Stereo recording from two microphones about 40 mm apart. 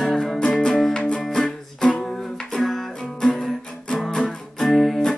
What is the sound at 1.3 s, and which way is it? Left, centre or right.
Music, centre.